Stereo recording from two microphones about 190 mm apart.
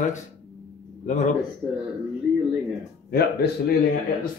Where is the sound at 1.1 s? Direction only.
40° left (ahead or behind).